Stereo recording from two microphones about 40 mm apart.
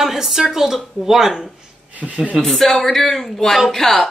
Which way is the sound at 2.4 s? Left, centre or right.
Centre.